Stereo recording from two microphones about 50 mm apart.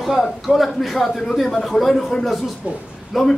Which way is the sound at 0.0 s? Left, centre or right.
Centre.